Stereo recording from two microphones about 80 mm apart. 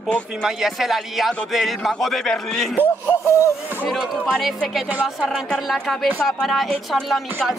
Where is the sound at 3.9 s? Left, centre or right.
Centre.